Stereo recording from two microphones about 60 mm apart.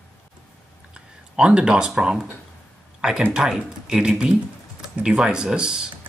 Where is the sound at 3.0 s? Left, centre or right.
Centre.